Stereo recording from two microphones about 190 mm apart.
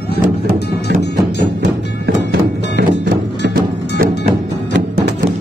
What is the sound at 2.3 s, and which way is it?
Music, 60° right (ahead or behind).